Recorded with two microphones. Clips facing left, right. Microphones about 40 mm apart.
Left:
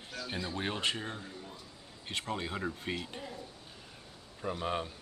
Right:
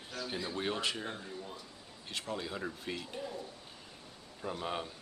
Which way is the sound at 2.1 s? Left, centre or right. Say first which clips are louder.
Left 2 dB; left.